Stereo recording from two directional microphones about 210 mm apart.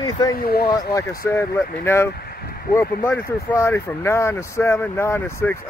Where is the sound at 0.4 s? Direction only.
45° left (ahead or behind).